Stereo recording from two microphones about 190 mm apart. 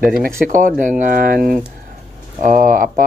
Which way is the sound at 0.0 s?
50° right (ahead or behind).